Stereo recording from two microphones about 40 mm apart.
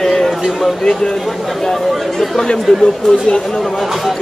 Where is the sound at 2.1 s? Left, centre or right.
Centre.